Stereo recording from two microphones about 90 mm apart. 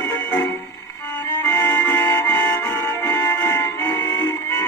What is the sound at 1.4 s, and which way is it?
Music, 30° left (ahead or behind).